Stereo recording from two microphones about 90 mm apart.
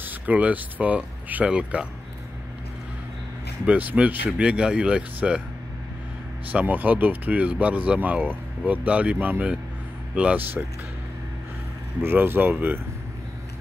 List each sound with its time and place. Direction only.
0.0 s speech: 20° right (ahead or behind)
3.6 s speech: 15° right (ahead or behind)
6.5 s speech: 20° right (ahead or behind)
12.0 s speech: 25° right (ahead or behind)